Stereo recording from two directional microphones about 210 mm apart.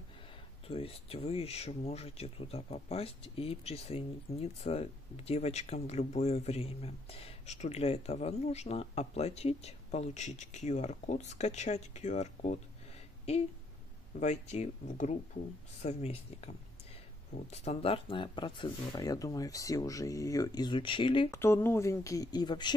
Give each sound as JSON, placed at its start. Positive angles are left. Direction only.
{"t": 0.7, "sound": "speech", "side_deg": 25}
{"t": 21.3, "sound": "speech", "side_deg": 10}